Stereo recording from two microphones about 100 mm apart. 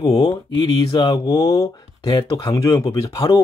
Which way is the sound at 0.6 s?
45° left (ahead or behind).